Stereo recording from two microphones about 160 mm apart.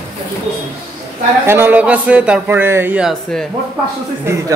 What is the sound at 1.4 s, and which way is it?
Speech, 15° right (ahead or behind).